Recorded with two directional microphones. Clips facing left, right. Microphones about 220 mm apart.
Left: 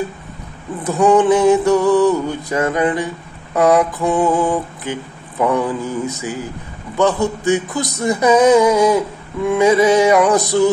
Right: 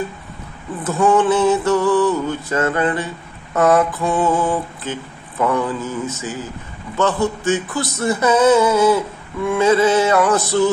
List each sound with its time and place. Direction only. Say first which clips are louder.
0.8 s mantra: left 3 dB; 15° left (ahead or behind)